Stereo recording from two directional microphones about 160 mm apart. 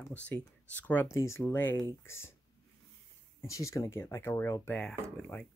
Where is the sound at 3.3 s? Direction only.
20° left (ahead or behind).